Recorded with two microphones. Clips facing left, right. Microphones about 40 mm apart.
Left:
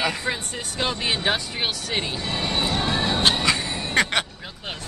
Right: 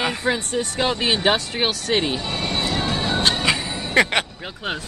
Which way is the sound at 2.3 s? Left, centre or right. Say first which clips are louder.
Right 1 dB; centre.